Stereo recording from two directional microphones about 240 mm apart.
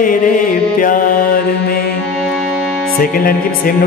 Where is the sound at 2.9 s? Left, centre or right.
Left.